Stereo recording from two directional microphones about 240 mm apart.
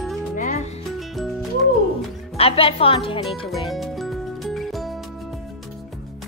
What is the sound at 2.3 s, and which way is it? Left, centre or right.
Speech, left.